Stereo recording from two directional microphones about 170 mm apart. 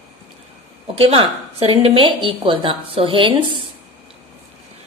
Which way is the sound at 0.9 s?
35° right (ahead or behind).